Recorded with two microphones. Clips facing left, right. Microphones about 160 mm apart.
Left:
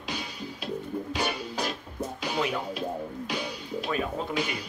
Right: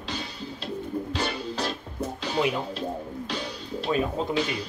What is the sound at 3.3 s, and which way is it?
Music, 10° left (ahead or behind).